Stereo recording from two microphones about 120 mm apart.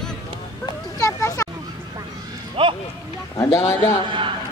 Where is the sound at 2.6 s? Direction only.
45° right (ahead or behind).